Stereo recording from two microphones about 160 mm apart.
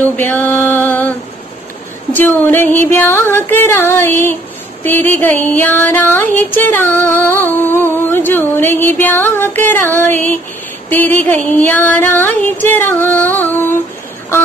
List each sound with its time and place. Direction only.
0.2 s music: 10° left (ahead or behind)
2.1 s music: 15° left (ahead or behind)